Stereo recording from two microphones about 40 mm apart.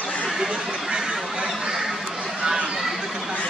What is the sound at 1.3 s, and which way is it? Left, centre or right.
Duck, centre.